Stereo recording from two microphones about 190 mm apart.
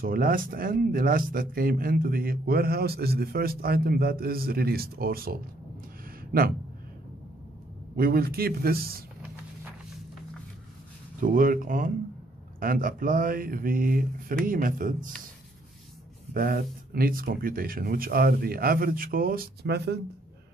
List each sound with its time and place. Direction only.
0.0 s speech: 50° right (ahead or behind)
7.9 s speech: 50° right (ahead or behind)
11.1 s speech: 45° right (ahead or behind)
16.3 s speech: 50° right (ahead or behind)